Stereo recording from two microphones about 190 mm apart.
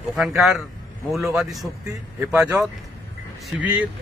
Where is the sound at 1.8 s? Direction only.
15° right (ahead or behind).